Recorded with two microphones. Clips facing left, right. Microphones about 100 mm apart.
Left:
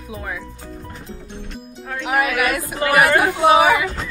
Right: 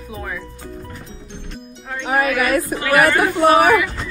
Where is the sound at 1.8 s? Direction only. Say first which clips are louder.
Right 1 dB; 5° left (ahead or behind).